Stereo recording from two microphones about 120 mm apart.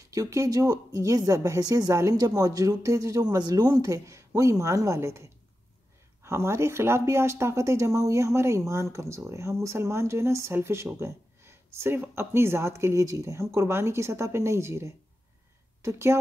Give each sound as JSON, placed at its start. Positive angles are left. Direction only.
{"t": 0.1, "sound": "speech", "side_deg": -30}